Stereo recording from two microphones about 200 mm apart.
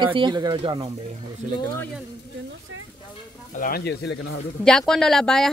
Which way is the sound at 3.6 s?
50° left (ahead or behind).